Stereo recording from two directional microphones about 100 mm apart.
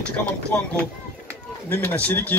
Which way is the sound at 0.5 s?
15° left (ahead or behind).